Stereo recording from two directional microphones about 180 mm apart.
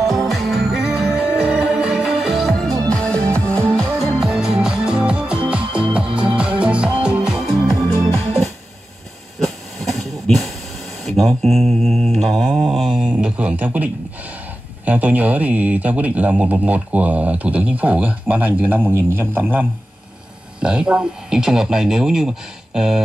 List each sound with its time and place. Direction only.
0.3 s music: centre (ahead or behind)
4.2 s music: 5° right (ahead or behind)
5.7 s music: 30° right (ahead or behind)
6.2 s music: 5° right (ahead or behind)
8.1 s music: 15° left (ahead or behind)
9.4 s hiss: centre (ahead or behind)
11.1 s mantra: centre (ahead or behind)
12.3 s a sound: centre (ahead or behind)
14.9 s speech: 10° right (ahead or behind)